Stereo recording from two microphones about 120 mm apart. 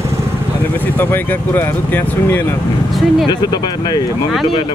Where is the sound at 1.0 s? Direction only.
15° left (ahead or behind).